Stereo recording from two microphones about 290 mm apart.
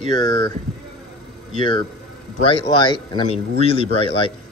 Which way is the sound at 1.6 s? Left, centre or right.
Centre.